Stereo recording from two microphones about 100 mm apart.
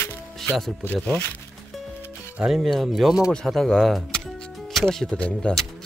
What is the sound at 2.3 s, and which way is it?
Speech, 5° right (ahead or behind).